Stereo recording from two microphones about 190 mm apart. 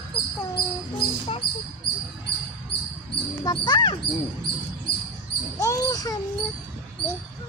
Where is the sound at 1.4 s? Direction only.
55° left (ahead or behind).